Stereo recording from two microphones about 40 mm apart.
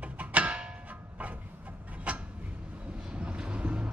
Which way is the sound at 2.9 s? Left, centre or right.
Right.